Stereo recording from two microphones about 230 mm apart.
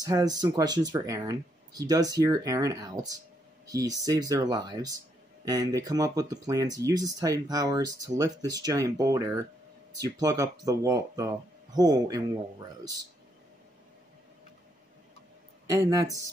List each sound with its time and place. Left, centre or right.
0.0 s speech: centre
15.6 s speech: centre